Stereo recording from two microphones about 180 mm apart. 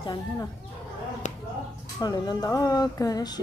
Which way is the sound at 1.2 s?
40° left (ahead or behind).